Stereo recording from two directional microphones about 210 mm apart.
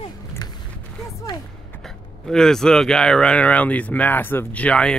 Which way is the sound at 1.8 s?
Centre (ahead or behind).